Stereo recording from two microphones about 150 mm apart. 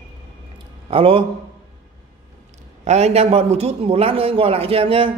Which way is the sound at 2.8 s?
45° right (ahead or behind).